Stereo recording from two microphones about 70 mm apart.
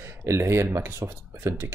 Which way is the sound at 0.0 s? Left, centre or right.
Right.